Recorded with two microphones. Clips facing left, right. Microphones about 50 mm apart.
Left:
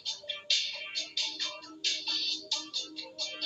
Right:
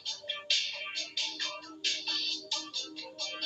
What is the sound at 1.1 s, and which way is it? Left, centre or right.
Music, centre.